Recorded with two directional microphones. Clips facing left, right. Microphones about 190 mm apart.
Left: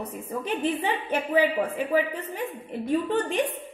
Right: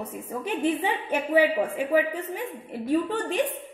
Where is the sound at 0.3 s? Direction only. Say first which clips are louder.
Right 1 dB; 10° right (ahead or behind).